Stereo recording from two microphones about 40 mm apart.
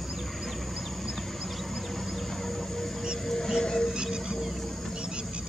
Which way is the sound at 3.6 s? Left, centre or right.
Centre.